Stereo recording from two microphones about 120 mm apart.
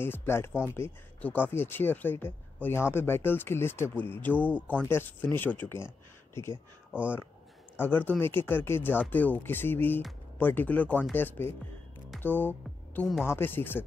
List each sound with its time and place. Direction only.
0.0 s speech: 20° left (ahead or behind)